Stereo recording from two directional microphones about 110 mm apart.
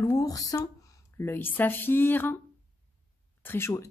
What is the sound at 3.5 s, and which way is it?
Speech, 20° left (ahead or behind).